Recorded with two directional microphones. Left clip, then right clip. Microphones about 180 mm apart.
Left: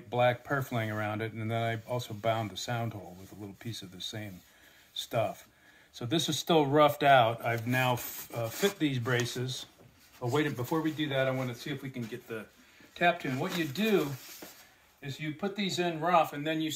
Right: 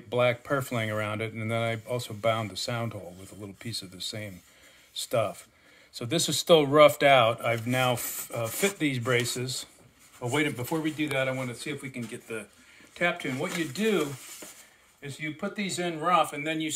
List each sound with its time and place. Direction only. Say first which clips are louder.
0.1 s speech: right 2 dB; 50° right (ahead or behind); by 12.4 s 30° right (ahead or behind)
12.9 s speech: even; 15° right (ahead or behind)